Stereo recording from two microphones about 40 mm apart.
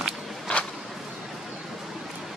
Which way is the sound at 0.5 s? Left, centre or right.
Left.